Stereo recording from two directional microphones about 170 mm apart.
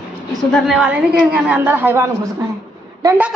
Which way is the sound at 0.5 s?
Centre (ahead or behind).